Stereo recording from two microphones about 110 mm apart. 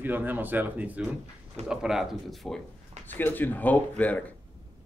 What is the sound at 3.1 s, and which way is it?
Speech, 15° left (ahead or behind).